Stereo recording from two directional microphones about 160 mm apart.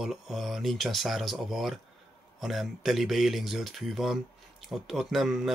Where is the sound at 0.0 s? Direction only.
Centre (ahead or behind).